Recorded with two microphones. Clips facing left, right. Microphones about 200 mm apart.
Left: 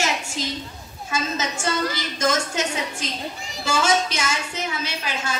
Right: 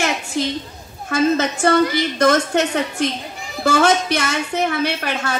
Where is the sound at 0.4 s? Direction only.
60° right (ahead or behind).